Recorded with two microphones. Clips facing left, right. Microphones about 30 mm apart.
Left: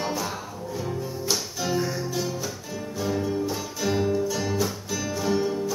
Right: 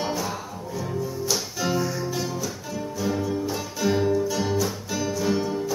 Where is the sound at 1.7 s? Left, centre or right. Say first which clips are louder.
Left 1 dB; centre.